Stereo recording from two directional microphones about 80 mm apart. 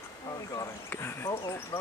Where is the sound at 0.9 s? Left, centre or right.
Left.